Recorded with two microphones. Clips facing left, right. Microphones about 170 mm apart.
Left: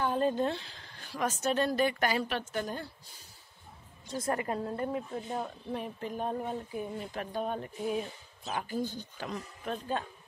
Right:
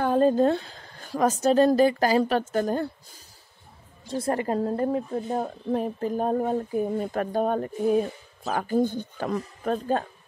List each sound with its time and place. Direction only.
0.0 s a woman's voice: 40° right (ahead or behind)
4.1 s a woman's voice: 30° right (ahead or behind)